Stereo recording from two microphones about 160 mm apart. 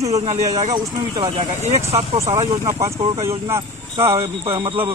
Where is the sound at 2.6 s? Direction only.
20° right (ahead or behind).